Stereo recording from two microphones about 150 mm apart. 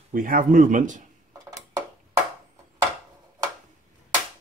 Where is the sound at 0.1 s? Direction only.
65° right (ahead or behind).